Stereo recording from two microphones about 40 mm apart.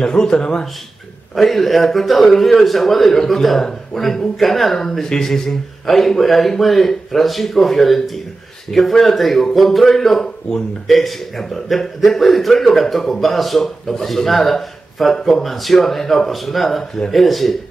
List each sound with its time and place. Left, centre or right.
0.0 s speech: centre
1.3 s speech: centre